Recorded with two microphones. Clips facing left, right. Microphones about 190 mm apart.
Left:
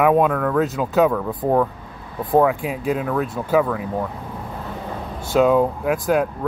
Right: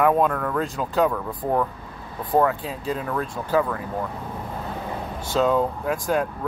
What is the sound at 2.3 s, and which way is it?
Speech, 10° left (ahead or behind).